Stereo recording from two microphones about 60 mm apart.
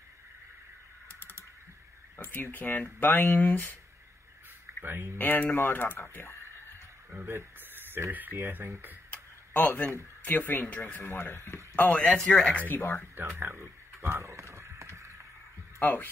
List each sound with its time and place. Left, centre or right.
2.1 s speech: left
4.8 s speech: right
5.1 s speech: left
7.2 s a sound: right
8.1 s speech: right
9.1 s tick-tock: left
10.2 s speech: left
11.7 s speech: left
12.0 s speech: centre
12.6 s speech: left
13.4 s a sound: right
15.8 s speech: left